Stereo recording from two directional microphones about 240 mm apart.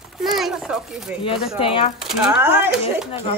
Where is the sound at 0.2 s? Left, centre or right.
Centre.